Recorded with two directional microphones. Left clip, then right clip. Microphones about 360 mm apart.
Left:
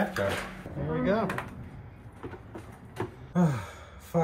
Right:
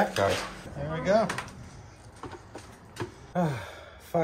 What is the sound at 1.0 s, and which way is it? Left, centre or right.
Speech, centre.